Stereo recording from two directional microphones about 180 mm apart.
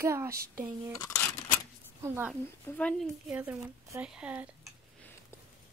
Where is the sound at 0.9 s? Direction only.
15° left (ahead or behind).